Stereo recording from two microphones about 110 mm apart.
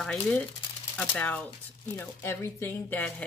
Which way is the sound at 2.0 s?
25° left (ahead or behind).